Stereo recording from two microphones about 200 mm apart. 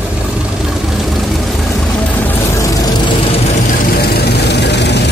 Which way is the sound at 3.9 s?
50° left (ahead or behind).